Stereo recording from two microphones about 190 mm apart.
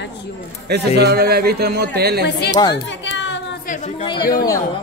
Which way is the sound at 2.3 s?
60° left (ahead or behind).